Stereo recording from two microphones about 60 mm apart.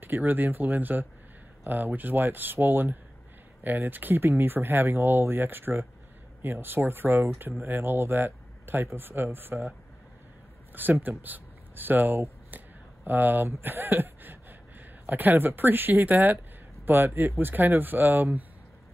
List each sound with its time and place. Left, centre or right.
0.0 s speech: right
10.7 s a man's voice: right